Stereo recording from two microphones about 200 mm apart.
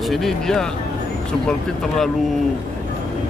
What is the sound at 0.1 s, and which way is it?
Speech, centre (ahead or behind).